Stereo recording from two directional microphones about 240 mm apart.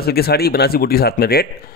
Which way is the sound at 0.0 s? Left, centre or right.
Left.